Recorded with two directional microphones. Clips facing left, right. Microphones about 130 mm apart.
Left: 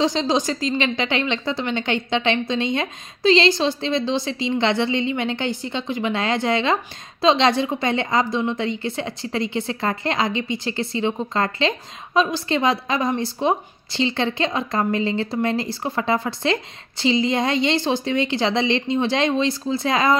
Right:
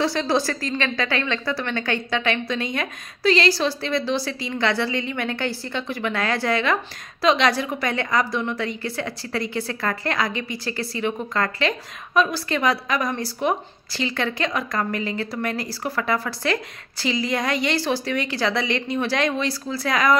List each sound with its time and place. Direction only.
0.0 s a woman's voice: 20° left (ahead or behind)